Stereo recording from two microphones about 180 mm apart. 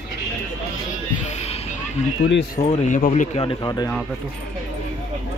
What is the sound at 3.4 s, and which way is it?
Speech, 25° left (ahead or behind).